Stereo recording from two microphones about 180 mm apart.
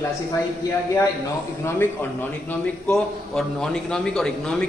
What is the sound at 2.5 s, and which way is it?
A man's voice, 5° left (ahead or behind).